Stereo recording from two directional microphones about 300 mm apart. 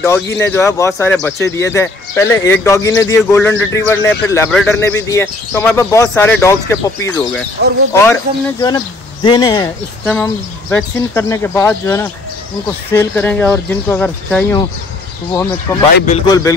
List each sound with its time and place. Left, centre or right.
0.0 s speech: centre
16.1 s speech: centre